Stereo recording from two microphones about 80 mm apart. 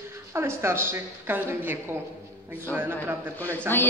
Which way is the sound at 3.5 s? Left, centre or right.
Left.